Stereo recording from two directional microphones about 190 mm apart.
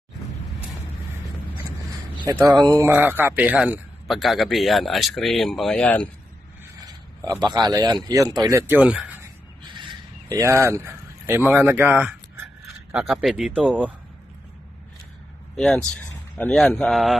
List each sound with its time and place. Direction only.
2.2 s a man's voice: 15° right (ahead or behind); by 6.0 s 5° left (ahead or behind)
7.2 s speech: 20° right (ahead or behind)
9.8 s a sound: 25° right (ahead or behind)
12.9 s a man's voice: centre (ahead or behind)
15.5 s speech: 5° left (ahead or behind)